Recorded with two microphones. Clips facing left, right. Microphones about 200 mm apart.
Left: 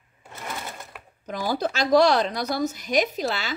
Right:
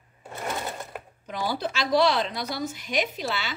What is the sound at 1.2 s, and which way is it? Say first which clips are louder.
A woman's voice: left 3 dB; 45° left (ahead or behind).